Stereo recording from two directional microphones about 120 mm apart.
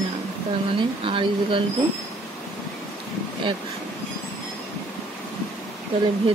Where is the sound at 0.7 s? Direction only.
45° right (ahead or behind).